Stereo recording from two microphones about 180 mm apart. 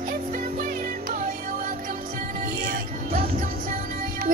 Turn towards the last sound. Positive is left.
turn(degrees=-50)  # may be behind; listen again after turning